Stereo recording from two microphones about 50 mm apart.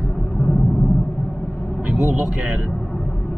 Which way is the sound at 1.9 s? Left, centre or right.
Centre.